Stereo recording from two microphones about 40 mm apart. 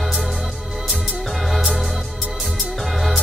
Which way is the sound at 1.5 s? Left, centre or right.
Centre.